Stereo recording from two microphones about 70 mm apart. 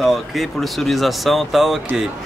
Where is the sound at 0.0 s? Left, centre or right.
Centre.